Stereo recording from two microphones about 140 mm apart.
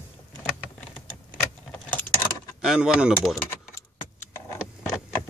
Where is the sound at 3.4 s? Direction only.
20° left (ahead or behind).